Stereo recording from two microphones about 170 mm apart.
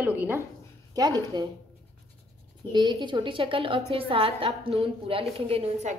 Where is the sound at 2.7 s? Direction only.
25° right (ahead or behind).